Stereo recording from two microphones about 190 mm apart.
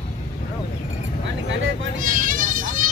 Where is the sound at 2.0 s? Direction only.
45° right (ahead or behind).